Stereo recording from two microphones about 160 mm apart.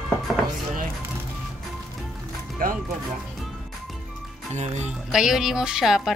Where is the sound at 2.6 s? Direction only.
60° right (ahead or behind).